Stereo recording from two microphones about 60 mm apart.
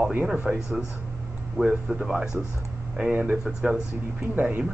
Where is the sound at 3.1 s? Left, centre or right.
Right.